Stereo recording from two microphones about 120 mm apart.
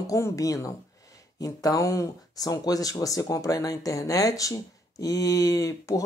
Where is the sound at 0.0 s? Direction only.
30° left (ahead or behind).